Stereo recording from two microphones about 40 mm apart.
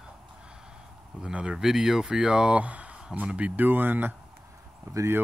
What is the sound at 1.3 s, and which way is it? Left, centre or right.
Speech, right.